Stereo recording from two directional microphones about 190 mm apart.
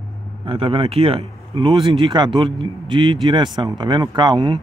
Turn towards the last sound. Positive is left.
turn(degrees=-20)  # may be behind; listen again after turning